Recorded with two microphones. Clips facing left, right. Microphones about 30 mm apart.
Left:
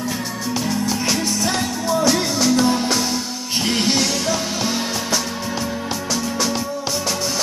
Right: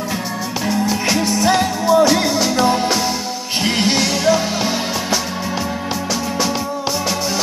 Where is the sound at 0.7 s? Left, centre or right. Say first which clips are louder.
Right 5 dB; centre.